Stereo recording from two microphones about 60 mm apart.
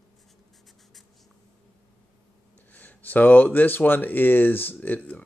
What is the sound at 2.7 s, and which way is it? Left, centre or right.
Speech, left.